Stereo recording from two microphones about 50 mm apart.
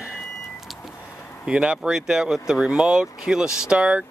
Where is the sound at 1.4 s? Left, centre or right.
Right.